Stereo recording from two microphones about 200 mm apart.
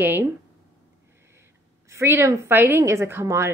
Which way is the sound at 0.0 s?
10° right (ahead or behind).